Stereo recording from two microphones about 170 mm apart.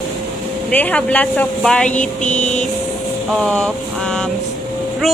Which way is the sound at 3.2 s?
5° left (ahead or behind).